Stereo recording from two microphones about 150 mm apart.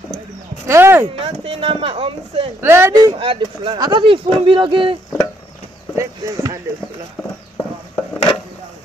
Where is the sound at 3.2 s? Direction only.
35° right (ahead or behind).